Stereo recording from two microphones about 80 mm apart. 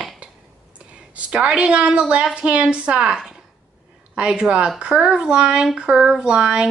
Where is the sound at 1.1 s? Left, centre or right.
Centre.